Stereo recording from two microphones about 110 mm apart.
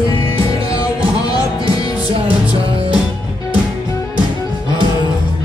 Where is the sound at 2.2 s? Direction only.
55° right (ahead or behind).